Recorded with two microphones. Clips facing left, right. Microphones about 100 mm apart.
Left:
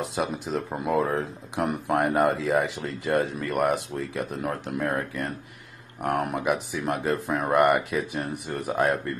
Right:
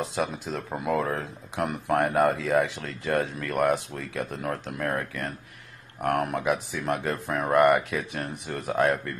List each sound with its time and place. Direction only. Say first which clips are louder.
0.0 s speech: left 1 dB; 5° left (ahead or behind)